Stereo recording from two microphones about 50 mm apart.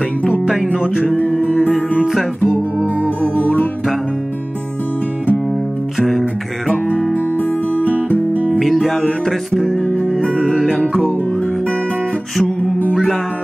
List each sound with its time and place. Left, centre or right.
0.3 s music: centre
2.0 s music: centre
3.2 s music: left
5.9 s music: centre
7.4 s music: left
8.5 s music: centre
10.4 s music: centre
12.9 s music: centre